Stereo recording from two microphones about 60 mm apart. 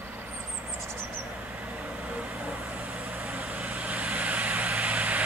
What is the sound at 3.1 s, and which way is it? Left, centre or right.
Vehicle, right.